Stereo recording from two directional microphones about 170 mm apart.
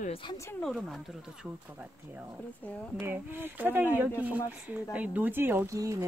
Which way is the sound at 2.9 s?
15° right (ahead or behind).